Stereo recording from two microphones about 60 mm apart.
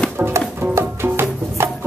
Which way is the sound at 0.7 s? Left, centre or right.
Right.